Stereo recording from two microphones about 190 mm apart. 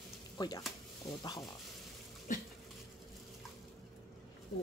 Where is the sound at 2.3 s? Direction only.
45° left (ahead or behind).